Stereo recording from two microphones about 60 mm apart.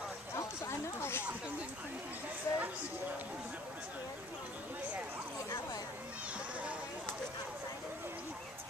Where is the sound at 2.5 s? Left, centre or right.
Left.